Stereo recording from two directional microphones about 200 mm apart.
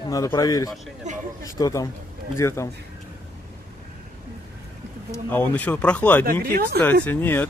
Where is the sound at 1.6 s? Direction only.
15° left (ahead or behind).